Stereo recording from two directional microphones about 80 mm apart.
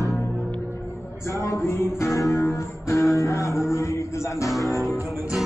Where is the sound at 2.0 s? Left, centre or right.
Left.